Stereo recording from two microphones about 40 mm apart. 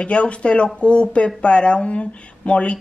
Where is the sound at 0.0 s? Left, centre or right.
Left.